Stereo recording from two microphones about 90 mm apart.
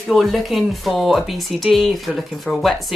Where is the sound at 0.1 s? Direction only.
Centre (ahead or behind).